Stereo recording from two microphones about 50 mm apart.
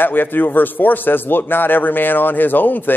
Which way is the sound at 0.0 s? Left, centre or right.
Left.